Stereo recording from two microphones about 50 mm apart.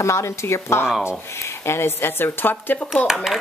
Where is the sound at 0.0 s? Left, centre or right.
Left.